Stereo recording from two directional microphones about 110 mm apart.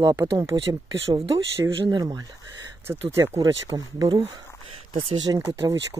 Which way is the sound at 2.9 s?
25° right (ahead or behind).